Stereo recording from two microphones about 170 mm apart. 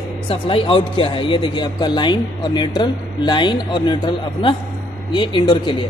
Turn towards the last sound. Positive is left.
turn(degrees=30)  # may be behind; listen again after turning